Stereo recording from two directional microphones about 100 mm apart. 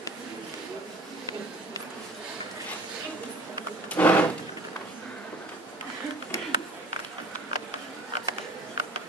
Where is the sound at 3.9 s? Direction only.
15° left (ahead or behind).